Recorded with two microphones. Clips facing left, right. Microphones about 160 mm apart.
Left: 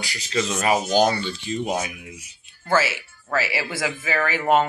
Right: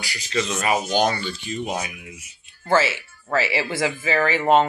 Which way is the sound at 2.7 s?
5° left (ahead or behind).